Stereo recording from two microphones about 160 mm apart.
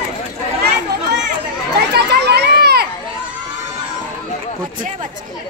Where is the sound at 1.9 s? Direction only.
90° right.